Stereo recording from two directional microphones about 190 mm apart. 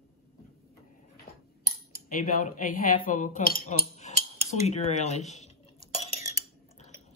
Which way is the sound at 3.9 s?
35° left (ahead or behind).